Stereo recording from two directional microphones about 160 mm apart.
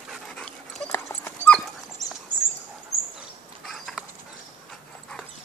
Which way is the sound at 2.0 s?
25° left (ahead or behind).